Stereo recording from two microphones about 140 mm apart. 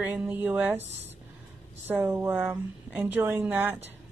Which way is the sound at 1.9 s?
15° right (ahead or behind).